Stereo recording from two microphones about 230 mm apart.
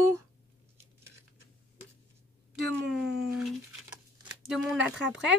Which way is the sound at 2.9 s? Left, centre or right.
Centre.